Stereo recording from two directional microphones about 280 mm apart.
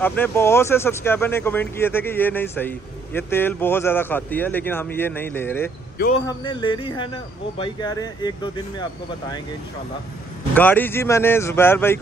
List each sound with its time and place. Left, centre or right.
0.0 s speech: centre
10.5 s speech: centre